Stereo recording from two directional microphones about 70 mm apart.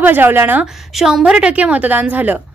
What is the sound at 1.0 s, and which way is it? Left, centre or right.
A woman's voice, centre.